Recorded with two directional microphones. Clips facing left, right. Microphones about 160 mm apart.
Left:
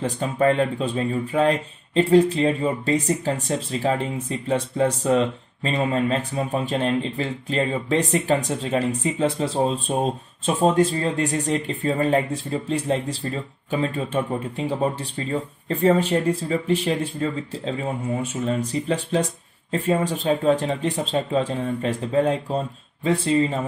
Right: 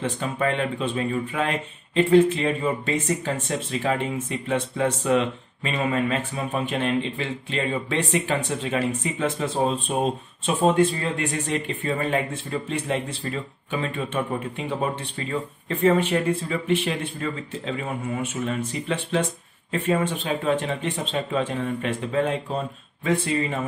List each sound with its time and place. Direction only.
0.0 s speech: 40° left (ahead or behind)
15.7 s speech: 35° left (ahead or behind)